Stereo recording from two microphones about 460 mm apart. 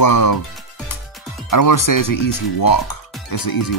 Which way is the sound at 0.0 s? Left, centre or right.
Left.